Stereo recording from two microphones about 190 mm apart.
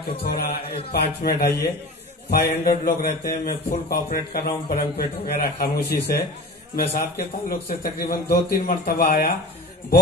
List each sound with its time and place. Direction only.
0.2 s a man's voice: 55° left (ahead or behind)